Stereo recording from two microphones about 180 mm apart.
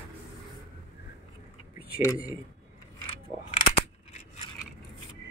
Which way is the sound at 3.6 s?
40° left (ahead or behind).